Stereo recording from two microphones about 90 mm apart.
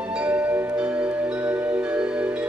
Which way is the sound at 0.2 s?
15° right (ahead or behind).